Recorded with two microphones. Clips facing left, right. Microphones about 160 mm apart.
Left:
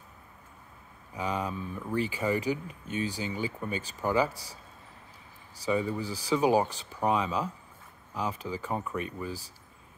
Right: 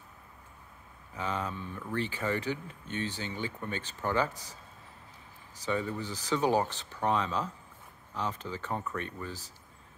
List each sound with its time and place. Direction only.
1.1 s speech: 10° left (ahead or behind)
4.3 s speech: 35° left (ahead or behind)
5.7 s speech: 10° left (ahead or behind)